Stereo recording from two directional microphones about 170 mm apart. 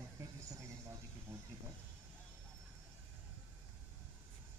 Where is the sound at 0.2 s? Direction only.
15° right (ahead or behind).